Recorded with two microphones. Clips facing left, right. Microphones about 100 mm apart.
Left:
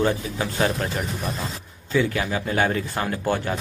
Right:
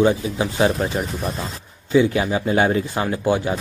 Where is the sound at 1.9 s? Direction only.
20° right (ahead or behind).